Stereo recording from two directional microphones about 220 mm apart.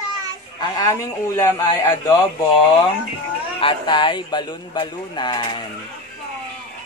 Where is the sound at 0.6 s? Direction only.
15° left (ahead or behind).